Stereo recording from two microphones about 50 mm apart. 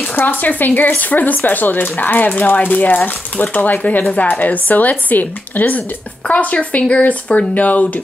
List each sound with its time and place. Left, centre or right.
0.1 s speech: left
6.2 s speech: left